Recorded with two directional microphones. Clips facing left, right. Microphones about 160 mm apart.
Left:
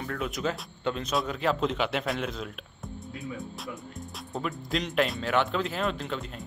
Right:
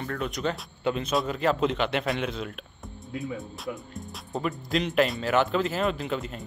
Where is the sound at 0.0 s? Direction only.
Centre (ahead or behind).